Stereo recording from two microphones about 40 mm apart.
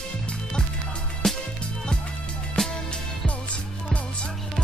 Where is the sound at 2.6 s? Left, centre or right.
Centre.